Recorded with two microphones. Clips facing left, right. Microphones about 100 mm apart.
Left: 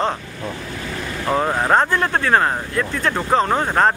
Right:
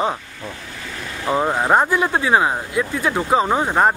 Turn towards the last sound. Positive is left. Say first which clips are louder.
# even
turn(degrees=-10)  # may be behind; listen again after turning